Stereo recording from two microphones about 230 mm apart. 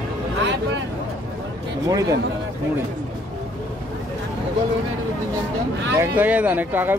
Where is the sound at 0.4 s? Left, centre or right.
Right.